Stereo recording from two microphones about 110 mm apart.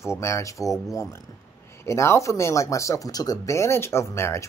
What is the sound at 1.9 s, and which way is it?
Speech, 25° left (ahead or behind).